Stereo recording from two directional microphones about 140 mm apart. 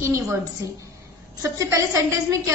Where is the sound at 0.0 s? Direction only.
20° right (ahead or behind).